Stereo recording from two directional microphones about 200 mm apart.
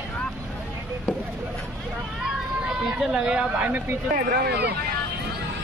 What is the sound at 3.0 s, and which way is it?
Speech, 5° right (ahead or behind).